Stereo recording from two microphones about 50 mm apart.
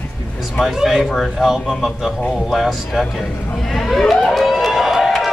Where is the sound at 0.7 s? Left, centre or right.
Centre.